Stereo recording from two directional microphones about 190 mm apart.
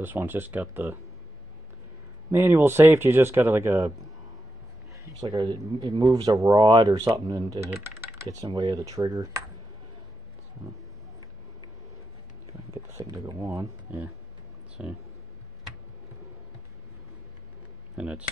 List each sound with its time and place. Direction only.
0.0 s speech: 10° right (ahead or behind)
2.3 s speech: 10° right (ahead or behind)
5.2 s speech: 20° right (ahead or behind)
12.9 s speech: 15° right (ahead or behind)
17.9 s speech: 5° right (ahead or behind)